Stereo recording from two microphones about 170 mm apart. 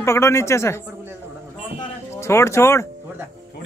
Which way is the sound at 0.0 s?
15° left (ahead or behind).